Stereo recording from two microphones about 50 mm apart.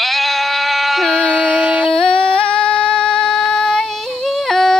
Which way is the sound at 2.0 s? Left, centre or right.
Left.